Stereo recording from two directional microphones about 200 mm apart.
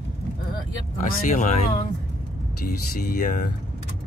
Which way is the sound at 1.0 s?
40° left (ahead or behind).